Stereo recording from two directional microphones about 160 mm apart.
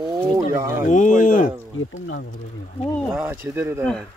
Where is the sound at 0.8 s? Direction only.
50° left (ahead or behind).